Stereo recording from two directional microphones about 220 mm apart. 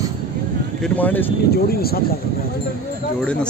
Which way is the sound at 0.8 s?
10° left (ahead or behind).